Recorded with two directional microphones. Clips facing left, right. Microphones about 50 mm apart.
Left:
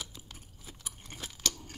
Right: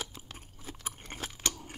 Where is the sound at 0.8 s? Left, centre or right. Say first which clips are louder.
Right 4 dB; right.